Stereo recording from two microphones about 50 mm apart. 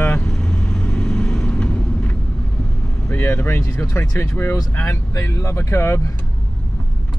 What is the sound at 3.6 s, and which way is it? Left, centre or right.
Speech, left.